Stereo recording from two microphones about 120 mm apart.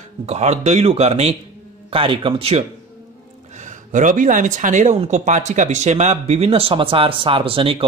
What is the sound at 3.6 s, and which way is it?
Speech, 90° right.